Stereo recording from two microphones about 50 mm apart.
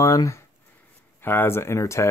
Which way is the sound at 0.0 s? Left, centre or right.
Left.